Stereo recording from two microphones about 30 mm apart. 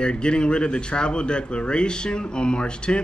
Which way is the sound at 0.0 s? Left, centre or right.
Left.